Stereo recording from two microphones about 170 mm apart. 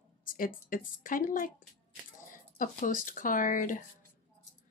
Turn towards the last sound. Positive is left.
turn(degrees=50)  # may be behind; listen again after turning